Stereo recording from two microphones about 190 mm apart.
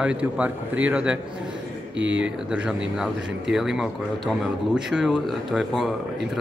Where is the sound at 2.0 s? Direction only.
75° right (ahead or behind).